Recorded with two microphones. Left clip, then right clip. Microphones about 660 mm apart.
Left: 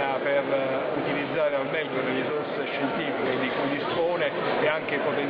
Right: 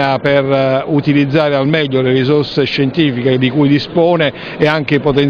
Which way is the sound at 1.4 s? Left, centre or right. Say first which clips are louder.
Right 12 dB; right.